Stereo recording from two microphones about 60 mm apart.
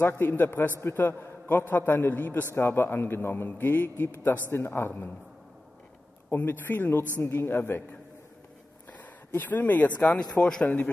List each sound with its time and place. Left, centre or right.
0.0 s a man's voice: left
2.5 s a man's voice: left
6.3 s a man's voice: left
9.3 s a man's voice: left